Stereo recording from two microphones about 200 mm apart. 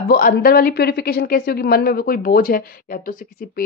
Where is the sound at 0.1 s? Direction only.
50° left (ahead or behind).